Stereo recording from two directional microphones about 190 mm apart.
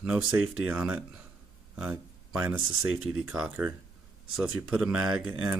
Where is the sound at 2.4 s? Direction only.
5° right (ahead or behind).